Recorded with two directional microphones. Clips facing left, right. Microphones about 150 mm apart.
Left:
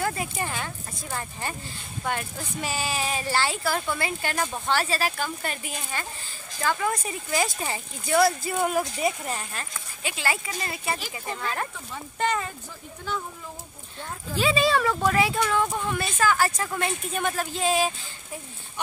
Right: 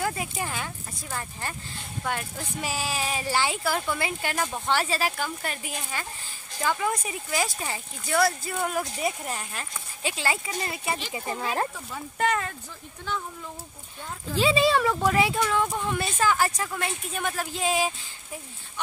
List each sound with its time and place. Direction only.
0.0 s speech: 5° right (ahead or behind)
2.0 s speech: centre (ahead or behind)
5.1 s speech: 5° right (ahead or behind)
10.0 s speech: 25° right (ahead or behind)
11.9 s speech: centre (ahead or behind)
14.4 s speech: 20° right (ahead or behind)
16.5 s speech: centre (ahead or behind)